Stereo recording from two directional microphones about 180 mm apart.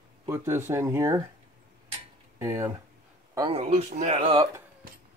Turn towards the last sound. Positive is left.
turn(degrees=-30)  # may be behind; listen again after turning